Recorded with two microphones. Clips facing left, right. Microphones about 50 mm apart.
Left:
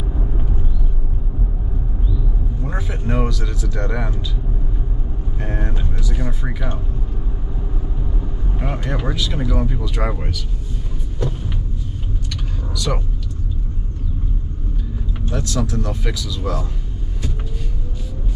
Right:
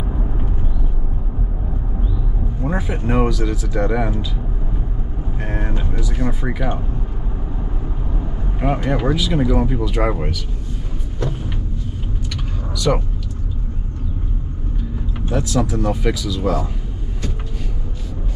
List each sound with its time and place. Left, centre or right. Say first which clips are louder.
0.1 s vehicle: right 1 dB; right
2.6 s speech: right 5 dB; centre
5.4 s speech: right 1 dB; centre
8.2 s speech: right 6 dB; centre
12.7 s speech: right 6 dB; centre
15.3 s speech: right 4 dB; centre